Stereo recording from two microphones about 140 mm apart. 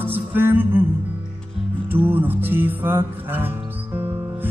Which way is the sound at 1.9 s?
15° right (ahead or behind).